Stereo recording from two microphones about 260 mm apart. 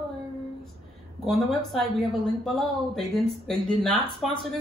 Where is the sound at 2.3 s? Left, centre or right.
Centre.